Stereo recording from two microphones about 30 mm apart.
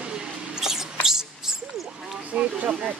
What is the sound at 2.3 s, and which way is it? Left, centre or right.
Speech, right.